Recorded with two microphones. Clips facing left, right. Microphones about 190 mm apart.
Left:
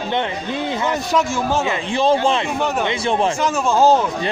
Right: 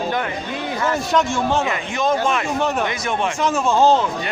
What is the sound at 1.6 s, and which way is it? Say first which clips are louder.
Speech: left 3 dB; 30° left (ahead or behind).